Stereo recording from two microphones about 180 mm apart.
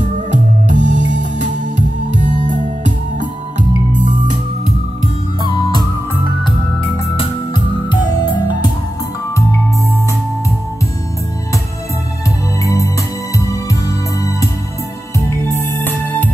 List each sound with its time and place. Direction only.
0.3 s music: 45° right (ahead or behind)
5.4 s music: 25° left (ahead or behind)
7.2 s music: 25° left (ahead or behind)
12.6 s music: 20° left (ahead or behind)